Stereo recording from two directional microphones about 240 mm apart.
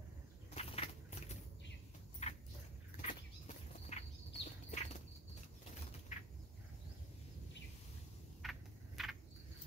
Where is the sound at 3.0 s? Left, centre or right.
Left.